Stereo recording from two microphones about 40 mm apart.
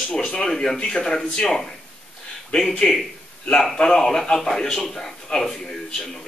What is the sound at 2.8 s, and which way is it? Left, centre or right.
A man's voice, left.